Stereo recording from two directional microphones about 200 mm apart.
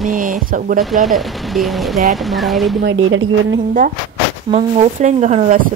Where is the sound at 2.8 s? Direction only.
75° right (ahead or behind).